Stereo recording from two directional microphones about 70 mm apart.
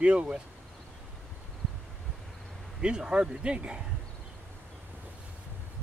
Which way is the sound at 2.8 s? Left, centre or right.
Centre.